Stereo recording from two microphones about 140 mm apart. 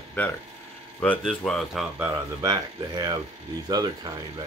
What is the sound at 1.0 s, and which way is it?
Speech, 10° left (ahead or behind).